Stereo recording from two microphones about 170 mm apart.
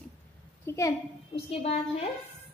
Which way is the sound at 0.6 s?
15° left (ahead or behind).